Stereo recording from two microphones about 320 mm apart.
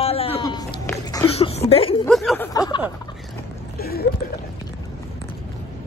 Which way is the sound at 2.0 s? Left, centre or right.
Centre.